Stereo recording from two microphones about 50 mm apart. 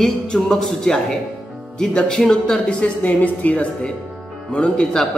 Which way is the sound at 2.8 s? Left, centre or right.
Left.